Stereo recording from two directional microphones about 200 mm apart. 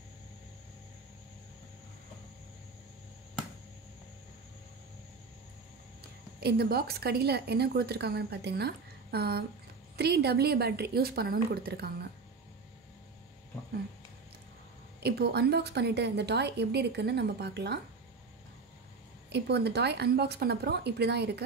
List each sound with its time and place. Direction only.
6.4 s a woman's voice: 50° right (ahead or behind)
15.0 s a woman's voice: 55° right (ahead or behind)
19.3 s a woman's voice: 55° right (ahead or behind)